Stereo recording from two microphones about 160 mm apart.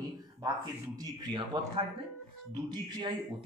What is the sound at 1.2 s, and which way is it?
A man's voice, 30° right (ahead or behind).